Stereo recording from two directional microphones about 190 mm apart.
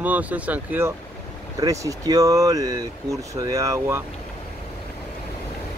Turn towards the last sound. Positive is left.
turn(degrees=-15)  # may be behind; listen again after turning